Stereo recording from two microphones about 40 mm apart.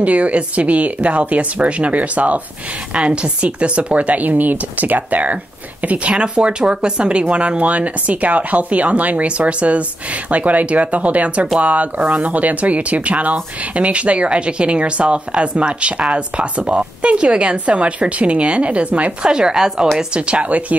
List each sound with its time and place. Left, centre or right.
0.0 s speech: right
2.9 s speech: right
6.1 s speech: right
19.2 s speech: centre
20.2 s speech: right